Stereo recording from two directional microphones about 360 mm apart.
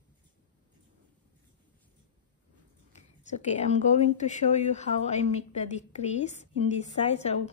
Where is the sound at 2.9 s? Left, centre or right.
Centre.